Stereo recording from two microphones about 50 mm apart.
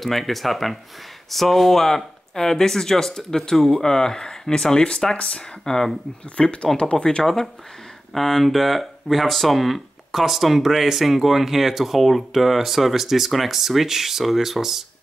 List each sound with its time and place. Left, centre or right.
0.0 s speech: centre
6.3 s speech: left
8.1 s speech: centre